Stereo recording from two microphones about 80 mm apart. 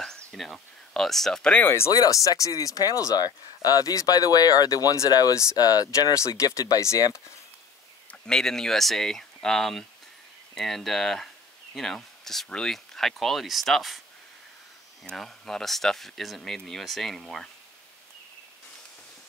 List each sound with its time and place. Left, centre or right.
0.0 s speech: centre
1.6 s speech: left
1.9 s speech: left
8.1 s speech: centre
15.0 s speech: centre